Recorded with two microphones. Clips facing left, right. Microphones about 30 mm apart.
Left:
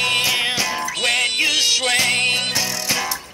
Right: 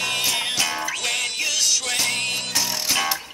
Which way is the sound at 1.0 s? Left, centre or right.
Left.